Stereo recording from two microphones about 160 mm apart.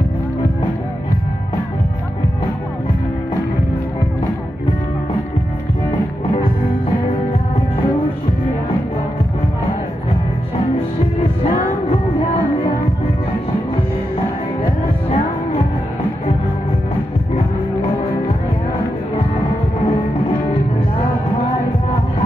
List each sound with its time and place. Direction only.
14.6 s music: 40° left (ahead or behind)